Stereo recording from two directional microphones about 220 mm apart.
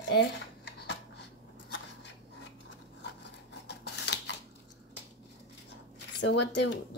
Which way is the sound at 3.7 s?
50° left (ahead or behind).